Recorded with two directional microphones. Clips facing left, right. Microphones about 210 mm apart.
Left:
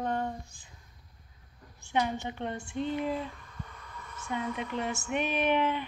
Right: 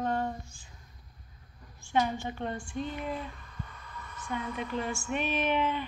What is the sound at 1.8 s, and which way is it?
A woman's voice, 20° left (ahead or behind).